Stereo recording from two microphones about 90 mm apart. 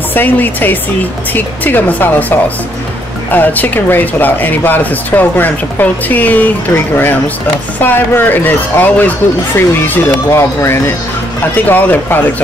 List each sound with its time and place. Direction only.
0.1 s speech: 20° left (ahead or behind)